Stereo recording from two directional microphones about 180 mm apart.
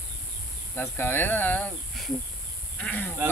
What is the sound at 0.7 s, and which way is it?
A man's voice, 10° left (ahead or behind).